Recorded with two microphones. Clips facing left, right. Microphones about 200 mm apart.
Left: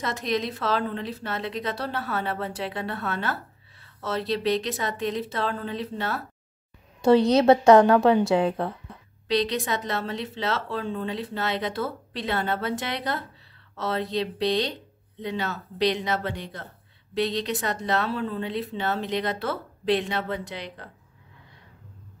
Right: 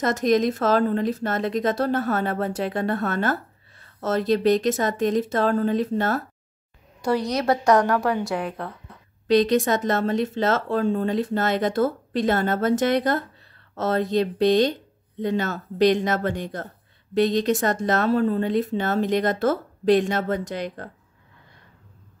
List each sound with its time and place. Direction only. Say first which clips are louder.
0.0 s speech: right 8 dB; 45° right (ahead or behind)
7.0 s a woman's voice: left 5 dB; 25° left (ahead or behind)
9.3 s speech: right 7 dB; 45° right (ahead or behind)